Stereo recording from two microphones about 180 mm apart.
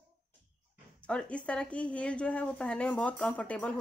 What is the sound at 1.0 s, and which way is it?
A woman's voice, 5° left (ahead or behind).